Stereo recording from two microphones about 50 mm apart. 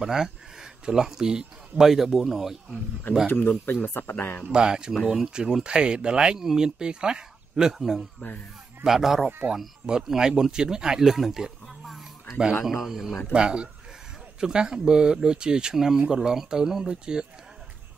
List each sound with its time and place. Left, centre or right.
0.0 s speech: centre
3.3 s speech: left
4.5 s speech: centre
4.9 s speech: centre
7.8 s speech: centre
13.3 s speech: centre